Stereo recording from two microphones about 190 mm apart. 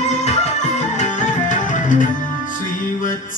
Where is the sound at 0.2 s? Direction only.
35° left (ahead or behind).